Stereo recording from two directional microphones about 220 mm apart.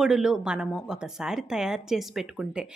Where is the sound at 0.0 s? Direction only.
Centre (ahead or behind).